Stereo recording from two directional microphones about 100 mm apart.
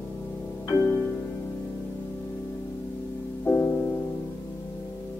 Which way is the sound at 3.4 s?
20° left (ahead or behind).